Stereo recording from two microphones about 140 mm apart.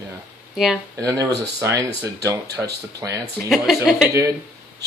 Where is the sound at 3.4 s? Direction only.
Centre (ahead or behind).